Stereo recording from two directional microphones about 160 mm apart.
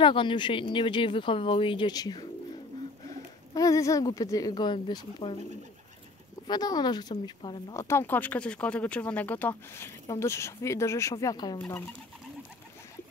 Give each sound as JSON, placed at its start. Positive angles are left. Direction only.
{"t": 0.0, "sound": "speech", "side_deg": 30}
{"t": 3.5, "sound": "speech", "side_deg": 20}
{"t": 6.4, "sound": "speech", "side_deg": 25}
{"t": 7.8, "sound": "speech", "side_deg": 15}
{"t": 11.5, "sound": "speech", "side_deg": 10}